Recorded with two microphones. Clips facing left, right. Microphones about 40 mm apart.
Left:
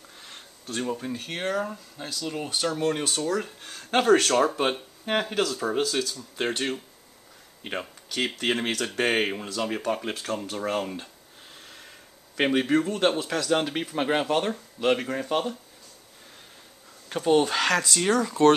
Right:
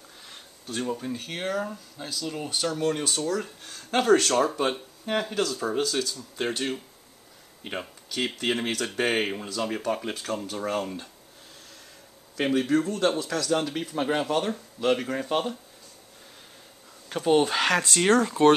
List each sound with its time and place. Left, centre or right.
0.8 s speech: centre
5.4 s speech: centre
11.6 s snort: left
12.4 s speech: left
14.2 s speech: centre
17.1 s speech: centre
17.8 s speech: right